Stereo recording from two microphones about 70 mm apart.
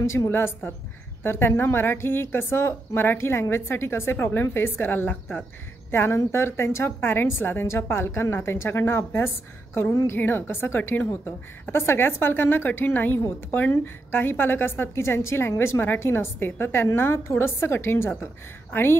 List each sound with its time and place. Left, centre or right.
0.0 s a woman's voice: left